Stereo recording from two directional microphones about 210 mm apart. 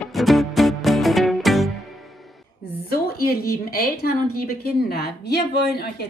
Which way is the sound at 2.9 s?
45° left (ahead or behind).